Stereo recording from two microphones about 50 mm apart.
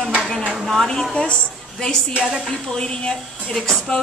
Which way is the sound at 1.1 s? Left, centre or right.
Centre.